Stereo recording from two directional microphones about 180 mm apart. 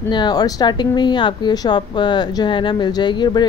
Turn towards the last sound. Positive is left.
turn(degrees=25)  # may be behind; listen again after turning